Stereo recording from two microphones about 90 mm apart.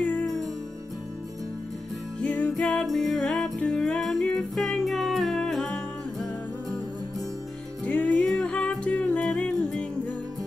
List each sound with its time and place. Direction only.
0.0 s music: 15° left (ahead or behind)
2.1 s music: 15° left (ahead or behind)
2.5 s music: 5° left (ahead or behind)
7.8 s music: 15° left (ahead or behind)